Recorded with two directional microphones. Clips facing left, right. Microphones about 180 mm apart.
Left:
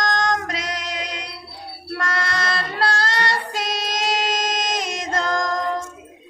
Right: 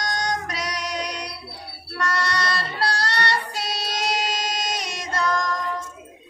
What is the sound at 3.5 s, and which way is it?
Child singing, 90° left.